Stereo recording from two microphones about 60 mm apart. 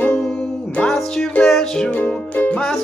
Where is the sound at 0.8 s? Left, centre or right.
Centre.